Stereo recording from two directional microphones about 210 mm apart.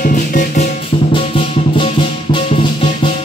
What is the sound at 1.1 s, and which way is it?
Music, 25° left (ahead or behind).